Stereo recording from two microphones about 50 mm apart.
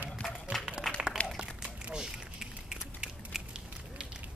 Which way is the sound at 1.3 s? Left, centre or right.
Centre.